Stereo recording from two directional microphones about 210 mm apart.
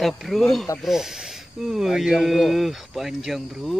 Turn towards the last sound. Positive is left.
turn(degrees=0)  # may be behind; listen again after turning